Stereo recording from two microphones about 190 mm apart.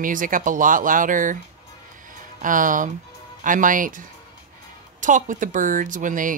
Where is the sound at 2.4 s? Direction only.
45° right (ahead or behind).